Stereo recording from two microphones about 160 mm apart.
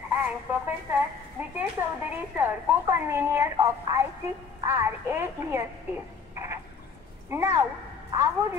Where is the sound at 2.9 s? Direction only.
15° right (ahead or behind).